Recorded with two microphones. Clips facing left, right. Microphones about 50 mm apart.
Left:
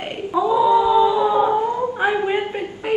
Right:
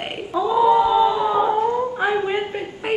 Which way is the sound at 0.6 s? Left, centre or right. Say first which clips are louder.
Even; right.